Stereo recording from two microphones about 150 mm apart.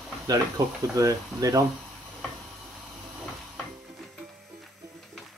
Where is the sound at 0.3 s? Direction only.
25° right (ahead or behind).